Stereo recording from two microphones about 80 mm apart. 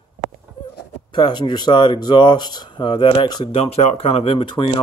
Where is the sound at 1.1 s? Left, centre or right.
Left.